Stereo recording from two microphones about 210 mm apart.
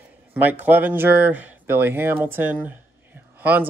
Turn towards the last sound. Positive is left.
turn(degrees=-10)  # may be behind; listen again after turning